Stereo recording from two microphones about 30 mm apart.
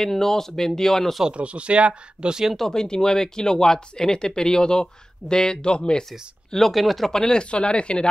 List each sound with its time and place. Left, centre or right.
0.0 s speech: centre
1.3 s speech: right
2.7 s speech: left
6.6 s speech: centre
7.1 s speech: left
7.5 s speech: left